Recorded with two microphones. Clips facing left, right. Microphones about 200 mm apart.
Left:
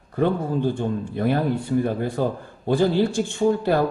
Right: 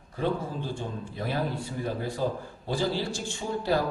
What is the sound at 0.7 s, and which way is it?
Speech, 55° left (ahead or behind).